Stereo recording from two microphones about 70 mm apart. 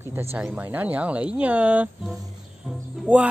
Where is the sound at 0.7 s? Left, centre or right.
Right.